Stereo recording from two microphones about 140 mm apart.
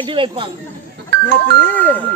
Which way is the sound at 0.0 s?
40° right (ahead or behind).